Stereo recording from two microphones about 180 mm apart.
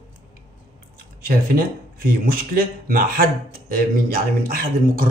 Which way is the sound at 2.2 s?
55° right (ahead or behind).